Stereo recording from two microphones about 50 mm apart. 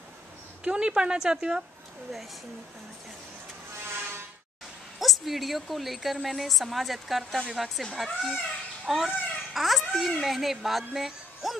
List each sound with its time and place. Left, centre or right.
0.7 s speech: centre
4.9 s a woman's voice: centre
11.0 s a sound: centre